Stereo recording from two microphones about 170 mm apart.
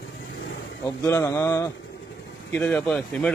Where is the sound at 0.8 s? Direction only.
15° left (ahead or behind).